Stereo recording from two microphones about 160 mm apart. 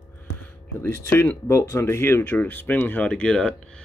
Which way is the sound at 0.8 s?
15° left (ahead or behind).